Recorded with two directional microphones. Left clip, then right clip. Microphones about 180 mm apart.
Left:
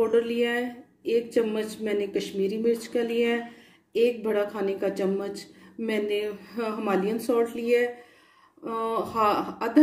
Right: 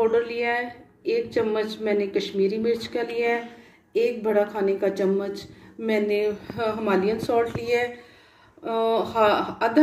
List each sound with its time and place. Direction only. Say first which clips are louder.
0.0 s speech: right 1 dB; 75° left (ahead or behind)
4.2 s speech: right 4 dB; 60° left (ahead or behind)
7.1 s speech: right 2 dB; 75° left (ahead or behind)